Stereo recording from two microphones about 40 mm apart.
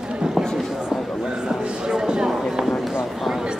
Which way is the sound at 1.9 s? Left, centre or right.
Centre.